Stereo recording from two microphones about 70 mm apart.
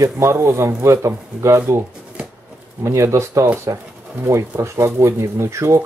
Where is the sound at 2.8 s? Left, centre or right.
Right.